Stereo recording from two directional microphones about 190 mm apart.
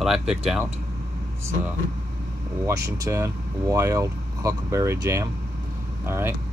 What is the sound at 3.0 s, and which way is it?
Speech, 15° right (ahead or behind).